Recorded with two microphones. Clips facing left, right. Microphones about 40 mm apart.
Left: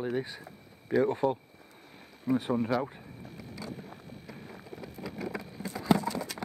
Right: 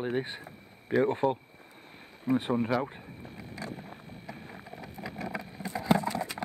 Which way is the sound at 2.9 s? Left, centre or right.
Right.